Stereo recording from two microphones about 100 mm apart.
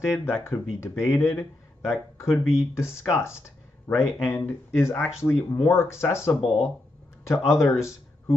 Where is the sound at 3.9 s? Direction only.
25° left (ahead or behind).